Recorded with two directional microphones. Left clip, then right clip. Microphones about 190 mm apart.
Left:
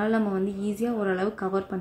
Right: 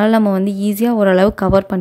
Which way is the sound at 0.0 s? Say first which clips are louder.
Right 12 dB; 55° right (ahead or behind).